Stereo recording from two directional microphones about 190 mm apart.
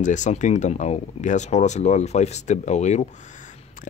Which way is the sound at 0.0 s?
40° left (ahead or behind).